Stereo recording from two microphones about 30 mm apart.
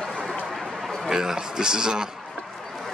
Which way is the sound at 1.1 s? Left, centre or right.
Centre.